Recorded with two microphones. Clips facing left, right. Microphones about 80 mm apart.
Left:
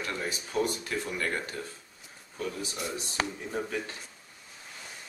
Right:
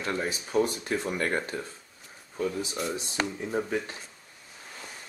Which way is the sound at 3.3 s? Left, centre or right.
Centre.